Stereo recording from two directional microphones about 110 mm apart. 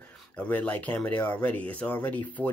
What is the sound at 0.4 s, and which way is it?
Speech, 15° left (ahead or behind).